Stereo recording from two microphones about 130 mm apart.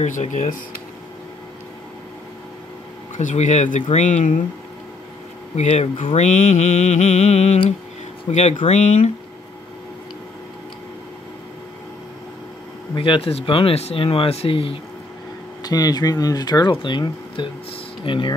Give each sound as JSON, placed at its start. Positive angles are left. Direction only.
{"t": 0.0, "sound": "speech", "side_deg": 70}
{"t": 3.2, "sound": "speech", "side_deg": 70}
{"t": 5.6, "sound": "speech", "side_deg": 55}
{"t": 6.1, "sound": "mantra", "side_deg": 65}
{"t": 12.9, "sound": "speech", "side_deg": 40}
{"t": 15.6, "sound": "speech", "side_deg": 30}